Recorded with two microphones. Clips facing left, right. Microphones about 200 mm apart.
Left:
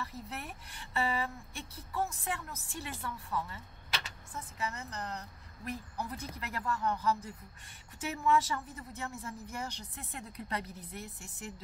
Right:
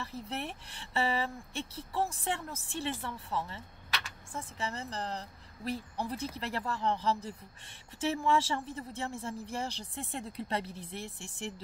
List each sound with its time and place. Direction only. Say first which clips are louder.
0.0 s a woman's voice: right 4 dB; 30° right (ahead or behind)